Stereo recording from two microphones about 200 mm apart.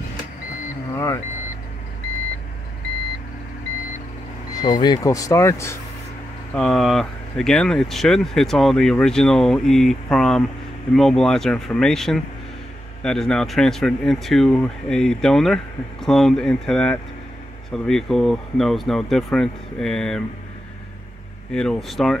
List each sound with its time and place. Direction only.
0.9 s vehicle: 15° left (ahead or behind)
4.6 s speech: 20° left (ahead or behind)
6.5 s speech: 5° left (ahead or behind)
21.5 s speech: 5° left (ahead or behind)